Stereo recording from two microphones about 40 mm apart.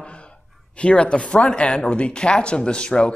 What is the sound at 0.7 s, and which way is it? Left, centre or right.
A man's voice, left.